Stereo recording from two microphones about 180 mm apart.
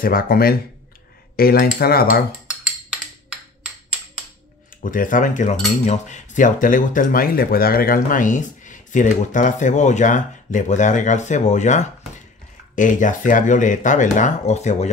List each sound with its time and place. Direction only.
0.0 s cutlery: 55° left (ahead or behind)
4.8 s speech: 50° left (ahead or behind)